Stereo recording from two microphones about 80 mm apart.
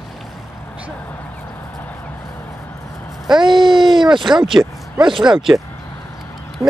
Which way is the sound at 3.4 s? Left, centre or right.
Right.